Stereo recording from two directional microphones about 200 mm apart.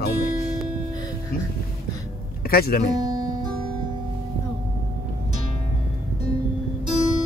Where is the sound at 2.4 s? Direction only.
50° left (ahead or behind).